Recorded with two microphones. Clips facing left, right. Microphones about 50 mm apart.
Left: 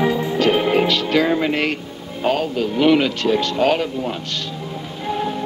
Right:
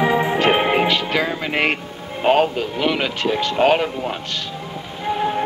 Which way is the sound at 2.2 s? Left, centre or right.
Right.